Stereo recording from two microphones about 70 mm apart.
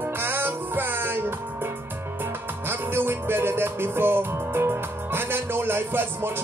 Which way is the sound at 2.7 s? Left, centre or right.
Right.